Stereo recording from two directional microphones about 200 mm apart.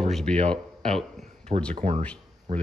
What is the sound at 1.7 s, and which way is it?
Speech, 30° right (ahead or behind).